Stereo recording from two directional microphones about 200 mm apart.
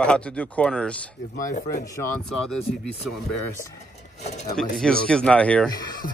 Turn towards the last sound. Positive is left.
turn(degrees=5)  # may be behind; listen again after turning